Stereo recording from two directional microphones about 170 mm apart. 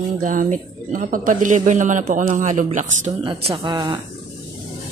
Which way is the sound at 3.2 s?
30° right (ahead or behind).